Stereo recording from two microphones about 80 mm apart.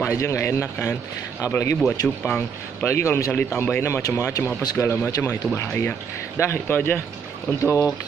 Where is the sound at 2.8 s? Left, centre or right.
Left.